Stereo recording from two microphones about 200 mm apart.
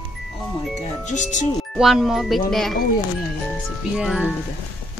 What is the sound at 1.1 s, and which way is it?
Speech, 40° left (ahead or behind).